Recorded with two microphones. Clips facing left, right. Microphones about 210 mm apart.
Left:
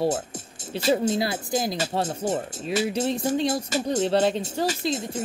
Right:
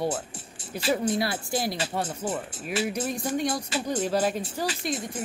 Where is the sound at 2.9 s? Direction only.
25° left (ahead or behind).